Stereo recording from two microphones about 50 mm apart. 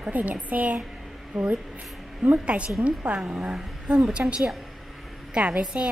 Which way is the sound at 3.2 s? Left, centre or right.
Centre.